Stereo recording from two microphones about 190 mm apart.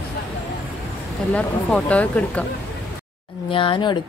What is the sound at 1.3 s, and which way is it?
Speech, 5° left (ahead or behind).